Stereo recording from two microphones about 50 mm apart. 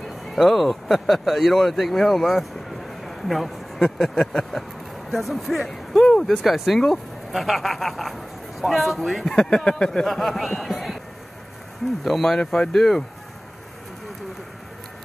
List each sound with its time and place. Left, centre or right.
0.3 s speech: centre
2.9 s a sound: centre
4.1 s speech: centre
5.1 s speech: centre
6.3 s speech: centre
9.2 s speech: centre
12.0 s speech: centre
12.4 s speech: centre
12.7 s speech: centre